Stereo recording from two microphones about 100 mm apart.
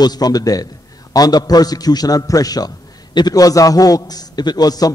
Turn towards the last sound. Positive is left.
turn(degrees=40)  # may be behind; listen again after turning